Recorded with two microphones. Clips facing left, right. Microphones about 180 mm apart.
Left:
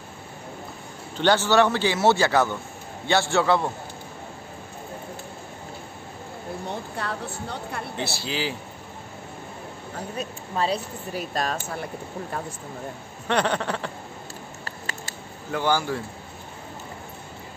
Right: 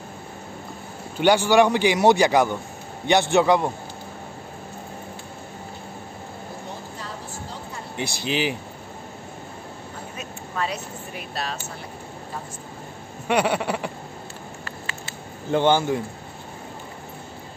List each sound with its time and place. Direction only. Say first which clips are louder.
1.1 s a man's voice: right 3 dB; 10° right (ahead or behind)
7.0 s a sound: left 4 dB; 65° left (ahead or behind)
7.9 s a man's voice: right 6 dB; 15° right (ahead or behind)
10.1 s speech: left 2 dB; 30° left (ahead or behind)
11.3 s speech: left 3 dB; 45° left (ahead or behind)
13.3 s a man's voice: right 2 dB; 10° right (ahead or behind)
14.6 s patter: right 1 dB; 40° left (ahead or behind)
15.5 s speech: right 5 dB; 25° right (ahead or behind)